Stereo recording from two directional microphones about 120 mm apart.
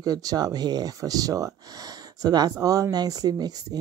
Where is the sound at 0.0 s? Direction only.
30° right (ahead or behind).